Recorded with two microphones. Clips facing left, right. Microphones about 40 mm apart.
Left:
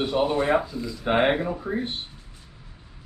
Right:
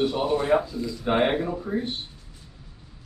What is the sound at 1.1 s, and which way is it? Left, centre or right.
Speech, centre.